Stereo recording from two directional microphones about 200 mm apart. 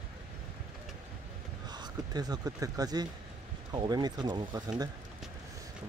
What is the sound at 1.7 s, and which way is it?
Speech, 20° right (ahead or behind).